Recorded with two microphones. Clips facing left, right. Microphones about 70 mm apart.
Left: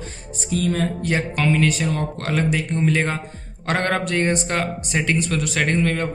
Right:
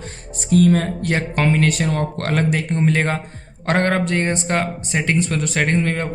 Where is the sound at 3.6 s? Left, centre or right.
Right.